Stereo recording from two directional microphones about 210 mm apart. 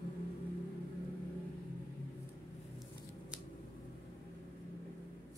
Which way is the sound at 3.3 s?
5° right (ahead or behind).